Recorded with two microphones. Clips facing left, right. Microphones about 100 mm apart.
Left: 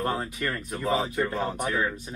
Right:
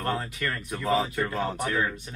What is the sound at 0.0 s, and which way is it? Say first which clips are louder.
Speech: left 1 dB; 25° left (ahead or behind).